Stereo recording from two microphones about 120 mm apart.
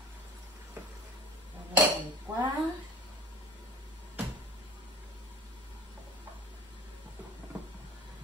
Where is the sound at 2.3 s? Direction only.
20° right (ahead or behind).